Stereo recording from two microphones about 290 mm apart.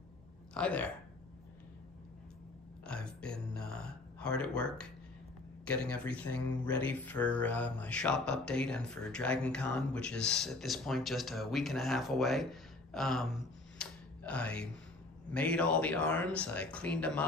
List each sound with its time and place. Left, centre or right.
0.6 s speech: centre
2.9 s a sound: centre
5.7 s speech: centre